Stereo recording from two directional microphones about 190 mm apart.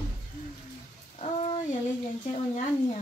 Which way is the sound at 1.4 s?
30° left (ahead or behind).